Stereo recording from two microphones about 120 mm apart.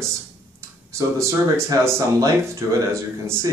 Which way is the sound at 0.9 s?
25° right (ahead or behind).